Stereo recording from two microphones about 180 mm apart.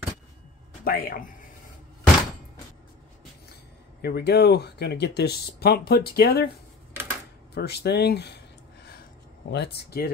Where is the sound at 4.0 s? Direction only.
65° left (ahead or behind).